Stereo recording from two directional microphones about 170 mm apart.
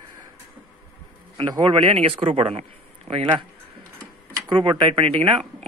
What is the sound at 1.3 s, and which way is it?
Speech, 30° right (ahead or behind).